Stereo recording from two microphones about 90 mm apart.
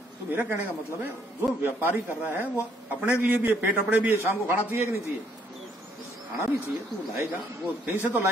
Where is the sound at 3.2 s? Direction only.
20° right (ahead or behind).